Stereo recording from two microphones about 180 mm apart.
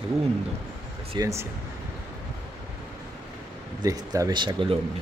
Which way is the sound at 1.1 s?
15° right (ahead or behind).